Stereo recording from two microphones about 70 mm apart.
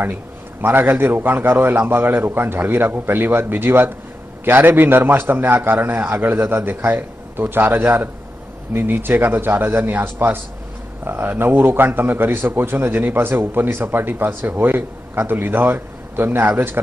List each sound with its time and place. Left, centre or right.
0.0 s a man's voice: right